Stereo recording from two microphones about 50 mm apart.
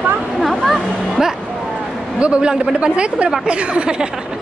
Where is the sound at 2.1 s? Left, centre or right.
Centre.